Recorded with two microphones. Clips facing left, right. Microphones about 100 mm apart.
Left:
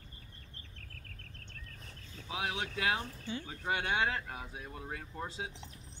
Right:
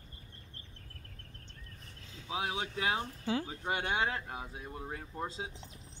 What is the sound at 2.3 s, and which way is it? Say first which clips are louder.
Speech: right 1 dB; 30° right (ahead or behind).